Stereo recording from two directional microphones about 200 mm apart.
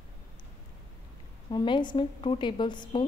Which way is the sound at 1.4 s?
25° left (ahead or behind).